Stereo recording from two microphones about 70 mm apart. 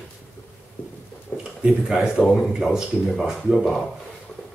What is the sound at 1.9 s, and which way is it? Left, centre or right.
Speech, centre.